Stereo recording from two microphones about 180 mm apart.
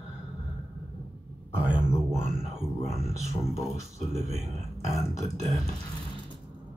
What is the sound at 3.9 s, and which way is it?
Speech, 40° right (ahead or behind).